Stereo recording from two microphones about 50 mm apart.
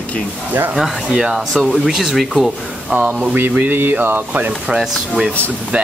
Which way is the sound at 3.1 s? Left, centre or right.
Right.